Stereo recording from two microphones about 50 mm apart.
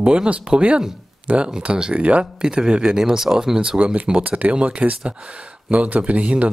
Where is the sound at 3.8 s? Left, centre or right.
Right.